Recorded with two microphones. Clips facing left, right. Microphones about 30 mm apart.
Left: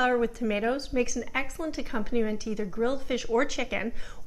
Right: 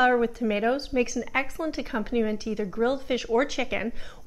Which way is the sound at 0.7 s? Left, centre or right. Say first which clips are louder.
Right 2 dB; right.